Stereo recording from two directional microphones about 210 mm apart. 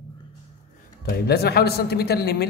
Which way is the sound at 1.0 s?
50° left (ahead or behind).